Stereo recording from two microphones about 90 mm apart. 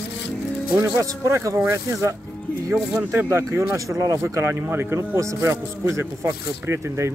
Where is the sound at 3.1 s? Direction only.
30° right (ahead or behind).